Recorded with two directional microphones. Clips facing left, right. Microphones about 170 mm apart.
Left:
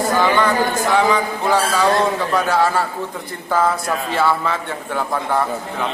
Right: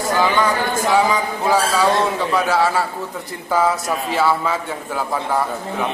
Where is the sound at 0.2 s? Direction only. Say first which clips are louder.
Even; 10° right (ahead or behind).